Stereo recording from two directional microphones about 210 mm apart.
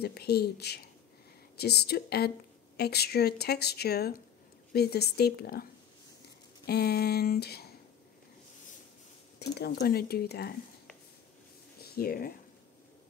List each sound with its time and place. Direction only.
0.0 s speech: 50° left (ahead or behind)
9.4 s speech: 50° left (ahead or behind)
11.8 s speech: 45° left (ahead or behind)